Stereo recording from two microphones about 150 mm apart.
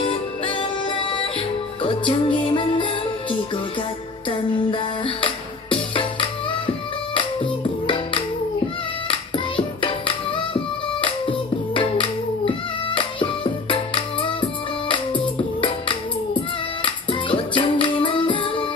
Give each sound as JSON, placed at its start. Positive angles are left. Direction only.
{"t": 0.0, "sound": "music", "side_deg": 35}
{"t": 9.6, "sound": "music", "side_deg": 35}